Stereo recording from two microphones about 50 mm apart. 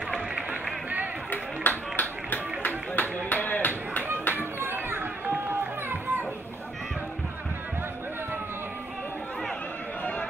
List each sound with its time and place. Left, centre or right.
1.3 s music: left
3.3 s a sound: left
4.4 s music: right